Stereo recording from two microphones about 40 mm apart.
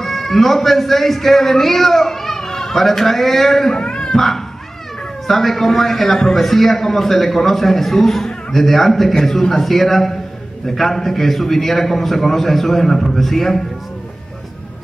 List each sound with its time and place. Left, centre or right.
0.0 s a man's voice: centre
3.8 s dog: centre
5.2 s a man's voice: centre